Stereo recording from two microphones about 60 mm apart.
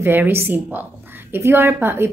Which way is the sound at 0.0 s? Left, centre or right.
Right.